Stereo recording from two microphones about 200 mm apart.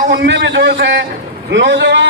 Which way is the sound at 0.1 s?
60° right (ahead or behind).